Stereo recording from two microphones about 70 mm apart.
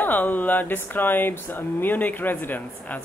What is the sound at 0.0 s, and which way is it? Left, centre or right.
Speech, left.